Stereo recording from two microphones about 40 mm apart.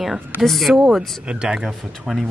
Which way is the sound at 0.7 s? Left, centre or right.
Centre.